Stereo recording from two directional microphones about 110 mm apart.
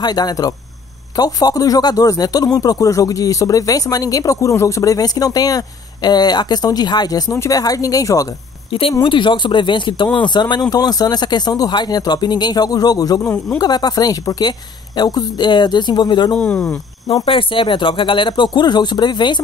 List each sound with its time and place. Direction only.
0.0 s speech: 40° left (ahead or behind)
9.0 s speech: 45° left (ahead or behind)
16.3 s speech: 5° left (ahead or behind)
17.3 s speech: 50° left (ahead or behind)